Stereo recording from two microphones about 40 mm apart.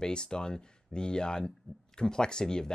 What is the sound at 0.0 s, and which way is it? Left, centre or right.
Speech, centre.